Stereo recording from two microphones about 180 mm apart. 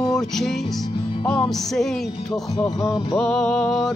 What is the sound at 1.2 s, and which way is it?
Music, 5° left (ahead or behind).